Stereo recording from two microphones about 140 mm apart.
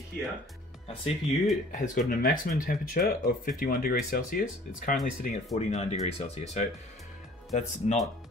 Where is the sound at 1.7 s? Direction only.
70° left (ahead or behind).